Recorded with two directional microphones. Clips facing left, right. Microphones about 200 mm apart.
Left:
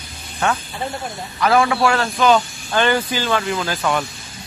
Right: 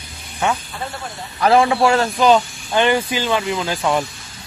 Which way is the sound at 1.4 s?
30° right (ahead or behind).